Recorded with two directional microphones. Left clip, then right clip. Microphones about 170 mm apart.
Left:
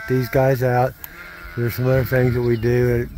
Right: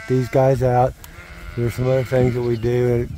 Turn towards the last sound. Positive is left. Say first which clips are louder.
# even
turn(degrees=-5)  # may be behind; listen again after turning